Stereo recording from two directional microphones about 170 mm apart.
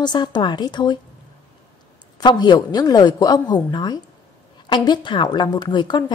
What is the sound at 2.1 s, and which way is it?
A woman's voice, 25° left (ahead or behind).